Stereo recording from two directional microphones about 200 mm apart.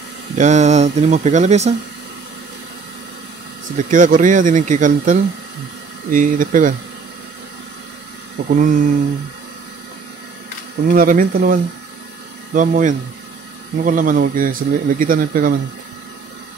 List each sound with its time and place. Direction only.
0.4 s speech: 35° right (ahead or behind)
3.7 s speech: 40° right (ahead or behind)
8.5 s speech: 40° right (ahead or behind)
10.9 s speech: 45° right (ahead or behind)